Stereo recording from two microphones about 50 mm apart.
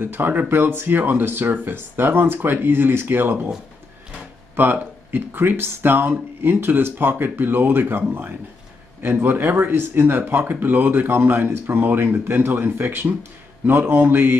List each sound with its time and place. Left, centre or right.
0.0 s speech: right
4.6 s a man's voice: right